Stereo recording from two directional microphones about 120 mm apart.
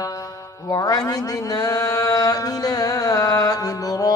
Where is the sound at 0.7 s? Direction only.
30° left (ahead or behind).